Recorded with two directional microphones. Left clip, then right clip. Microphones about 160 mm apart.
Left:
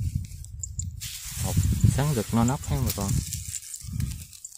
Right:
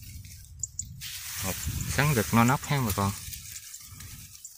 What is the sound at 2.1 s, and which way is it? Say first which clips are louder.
Speech: right 4 dB; centre (ahead or behind).